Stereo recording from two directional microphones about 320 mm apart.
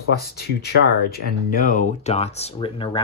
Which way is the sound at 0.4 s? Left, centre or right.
Left.